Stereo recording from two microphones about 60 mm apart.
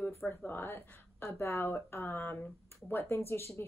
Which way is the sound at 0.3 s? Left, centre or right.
Left.